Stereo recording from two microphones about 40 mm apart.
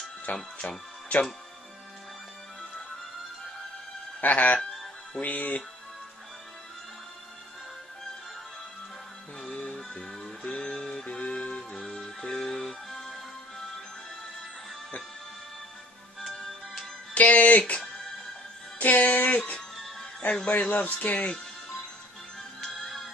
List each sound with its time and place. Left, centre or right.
0.6 s music: left
4.2 s speech: left
9.5 s music: left
10.0 s music: centre
10.4 s music: left
11.8 s music: centre
16.2 s music: centre
17.1 s music: left
20.4 s speech: left
22.8 s music: centre